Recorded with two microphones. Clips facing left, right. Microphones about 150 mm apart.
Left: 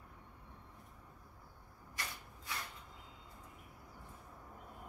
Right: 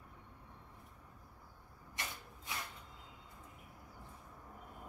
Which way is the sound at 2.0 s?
25° right (ahead or behind).